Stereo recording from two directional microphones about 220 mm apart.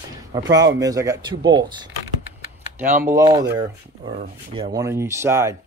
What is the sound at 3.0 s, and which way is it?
Speech, 15° right (ahead or behind).